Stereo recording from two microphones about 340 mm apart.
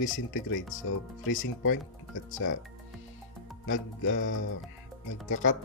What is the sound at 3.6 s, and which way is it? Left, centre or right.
Speech, left.